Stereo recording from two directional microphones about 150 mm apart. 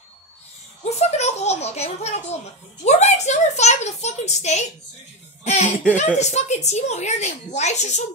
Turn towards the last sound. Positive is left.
turn(degrees=50)  # may be behind; listen again after turning